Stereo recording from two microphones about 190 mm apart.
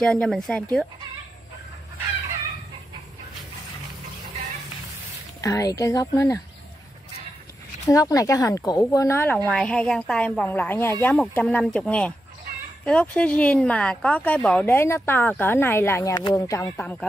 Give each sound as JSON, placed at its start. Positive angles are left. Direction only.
{"t": 0.0, "sound": "speech", "side_deg": 5}
{"t": 5.4, "sound": "speech", "side_deg": 15}
{"t": 7.8, "sound": "speech", "side_deg": 15}